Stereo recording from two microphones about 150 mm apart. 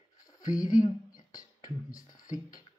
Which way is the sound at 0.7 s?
60° left (ahead or behind).